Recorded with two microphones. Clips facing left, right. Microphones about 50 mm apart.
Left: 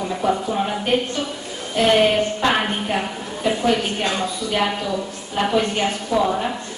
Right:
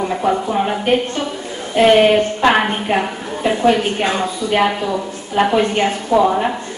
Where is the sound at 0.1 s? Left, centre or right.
Right.